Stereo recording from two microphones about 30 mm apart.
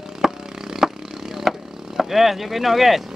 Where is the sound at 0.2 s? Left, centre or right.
Centre.